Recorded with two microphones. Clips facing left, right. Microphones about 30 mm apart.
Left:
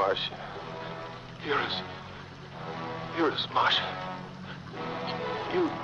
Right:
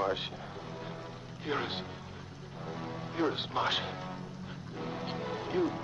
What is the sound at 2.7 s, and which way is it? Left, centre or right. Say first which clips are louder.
Music: left 4 dB; left.